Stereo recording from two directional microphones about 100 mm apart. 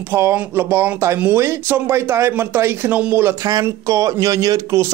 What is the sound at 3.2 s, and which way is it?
Speech, 35° right (ahead or behind).